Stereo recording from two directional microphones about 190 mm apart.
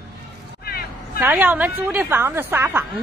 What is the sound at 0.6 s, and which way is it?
Vehicle, 50° left (ahead or behind).